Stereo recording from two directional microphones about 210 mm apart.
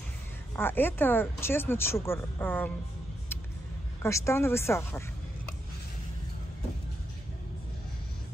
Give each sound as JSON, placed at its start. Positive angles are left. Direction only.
{"t": 0.6, "sound": "speech", "side_deg": 10}
{"t": 4.0, "sound": "speech", "side_deg": 15}